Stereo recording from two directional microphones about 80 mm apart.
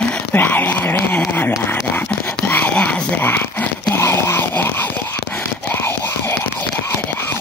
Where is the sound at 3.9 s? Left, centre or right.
Left.